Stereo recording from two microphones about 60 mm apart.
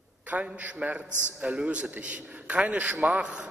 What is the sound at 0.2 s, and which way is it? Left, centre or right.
A man's voice, right.